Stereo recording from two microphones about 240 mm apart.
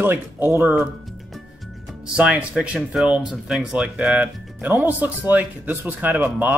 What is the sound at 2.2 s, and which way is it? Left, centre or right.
Speech, centre.